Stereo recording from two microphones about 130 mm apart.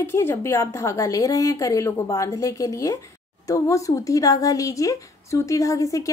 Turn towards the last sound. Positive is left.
turn(degrees=25)  # may be behind; listen again after turning